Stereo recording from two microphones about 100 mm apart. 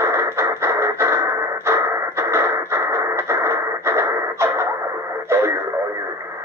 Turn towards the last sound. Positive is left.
turn(degrees=-25)  # may be behind; listen again after turning